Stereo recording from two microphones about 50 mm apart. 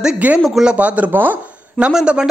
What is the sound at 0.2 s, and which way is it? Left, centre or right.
Speech, right.